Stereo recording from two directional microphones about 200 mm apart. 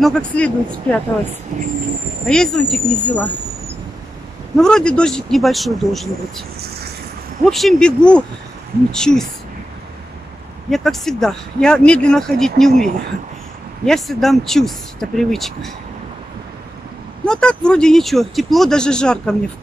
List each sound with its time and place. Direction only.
0.0 s speech: 5° left (ahead or behind)
1.5 s train: 35° right (ahead or behind)
2.2 s speech: 5° left (ahead or behind)
4.6 s speech: 5° left (ahead or behind)
7.4 s speech: centre (ahead or behind)
10.7 s speech: centre (ahead or behind)
13.8 s speech: centre (ahead or behind)
17.3 s speech: 5° left (ahead or behind)